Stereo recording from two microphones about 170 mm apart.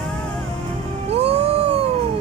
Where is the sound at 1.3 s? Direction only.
35° right (ahead or behind).